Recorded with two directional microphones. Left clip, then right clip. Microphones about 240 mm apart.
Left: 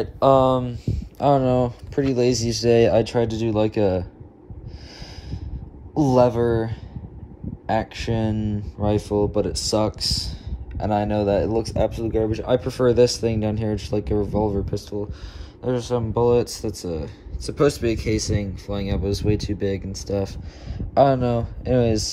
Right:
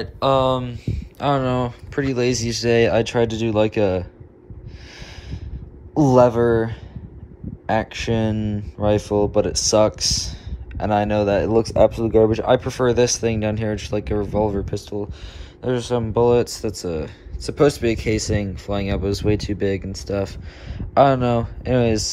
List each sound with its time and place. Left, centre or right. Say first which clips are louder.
0.0 s speech: left 2 dB; centre
5.9 s speech: right 3 dB; centre